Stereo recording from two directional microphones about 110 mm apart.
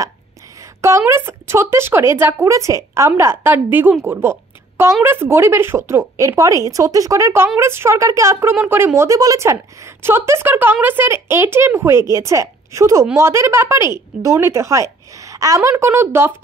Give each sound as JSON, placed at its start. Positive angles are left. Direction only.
{"t": 0.7, "sound": "a woman's voice", "side_deg": -25}
{"t": 15.8, "sound": "speech", "side_deg": -20}